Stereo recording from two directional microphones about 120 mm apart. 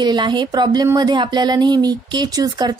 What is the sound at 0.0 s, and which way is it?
Speech, 40° right (ahead or behind).